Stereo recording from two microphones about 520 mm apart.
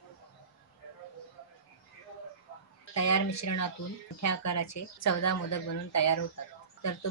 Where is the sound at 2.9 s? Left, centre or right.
Left.